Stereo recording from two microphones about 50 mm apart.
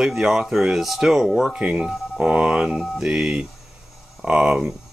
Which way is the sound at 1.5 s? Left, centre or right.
Centre.